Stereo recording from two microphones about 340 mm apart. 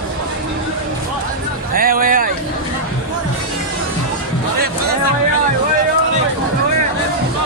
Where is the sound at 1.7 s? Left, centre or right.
Right.